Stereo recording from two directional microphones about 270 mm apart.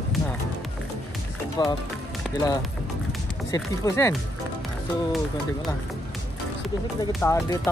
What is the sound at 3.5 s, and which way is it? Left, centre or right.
Speech, centre.